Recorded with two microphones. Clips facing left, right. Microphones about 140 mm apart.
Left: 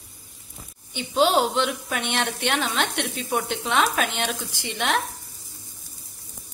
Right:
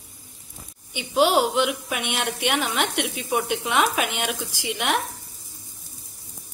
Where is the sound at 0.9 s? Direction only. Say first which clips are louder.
Right 1 dB; 10° right (ahead or behind).